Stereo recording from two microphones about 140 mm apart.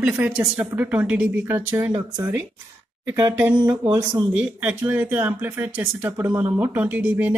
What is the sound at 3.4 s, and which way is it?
Speech, 10° right (ahead or behind).